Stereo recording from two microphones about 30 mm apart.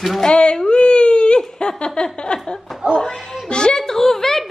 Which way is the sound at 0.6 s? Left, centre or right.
Left.